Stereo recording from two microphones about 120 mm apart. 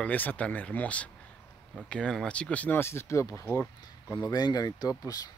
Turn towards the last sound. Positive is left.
turn(degrees=30)  # may be behind; listen again after turning